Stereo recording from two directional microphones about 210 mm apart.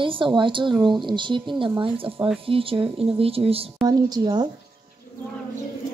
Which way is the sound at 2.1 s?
5° right (ahead or behind).